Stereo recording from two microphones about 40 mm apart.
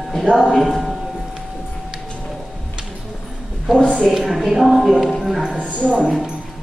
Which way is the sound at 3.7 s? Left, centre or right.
Centre.